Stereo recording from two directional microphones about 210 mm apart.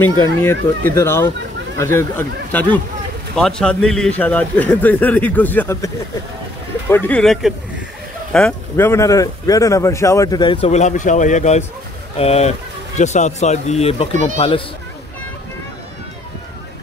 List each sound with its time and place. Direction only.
0.0 s speech: 10° left (ahead or behind)
6.9 s speech: 10° left (ahead or behind); by 14.6 s 30° left (ahead or behind)